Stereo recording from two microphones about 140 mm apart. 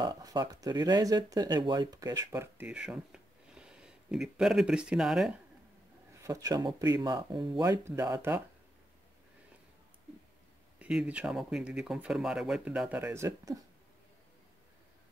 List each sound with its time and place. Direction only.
0.0 s speech: 30° right (ahead or behind); by 5.3 s 5° right (ahead or behind)
6.1 s speech: 20° right (ahead or behind)
10.8 s speech: 5° right (ahead or behind)